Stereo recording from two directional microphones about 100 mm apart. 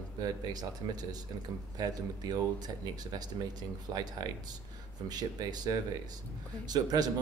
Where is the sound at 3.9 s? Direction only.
40° right (ahead or behind).